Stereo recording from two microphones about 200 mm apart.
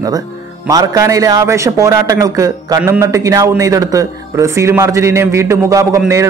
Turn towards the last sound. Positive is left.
turn(degrees=-15)  # may be behind; listen again after turning